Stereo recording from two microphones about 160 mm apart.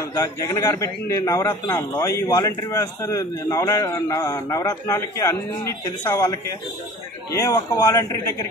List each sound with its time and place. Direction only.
0.1 s a man's voice: 20° left (ahead or behind)